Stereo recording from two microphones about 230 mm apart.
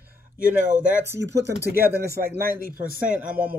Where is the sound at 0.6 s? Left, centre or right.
Right.